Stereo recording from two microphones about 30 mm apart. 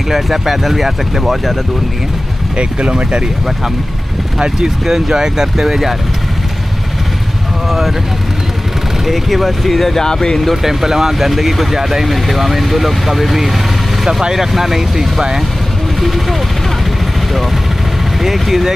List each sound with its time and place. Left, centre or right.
0.1 s speech: centre
2.5 s speech: right
4.4 s speech: centre
9.0 s speech: centre
9.9 s speech: left
10.5 s speech: centre
18.2 s speech: centre